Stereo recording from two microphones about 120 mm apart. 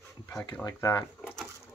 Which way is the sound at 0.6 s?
20° left (ahead or behind).